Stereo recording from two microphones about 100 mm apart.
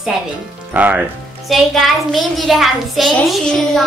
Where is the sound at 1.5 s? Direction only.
Centre (ahead or behind).